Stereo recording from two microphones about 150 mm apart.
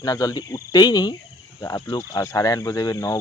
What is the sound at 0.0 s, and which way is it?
Speech, 25° left (ahead or behind).